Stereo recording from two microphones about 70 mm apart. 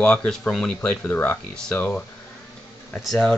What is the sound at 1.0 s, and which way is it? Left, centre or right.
Speech, left.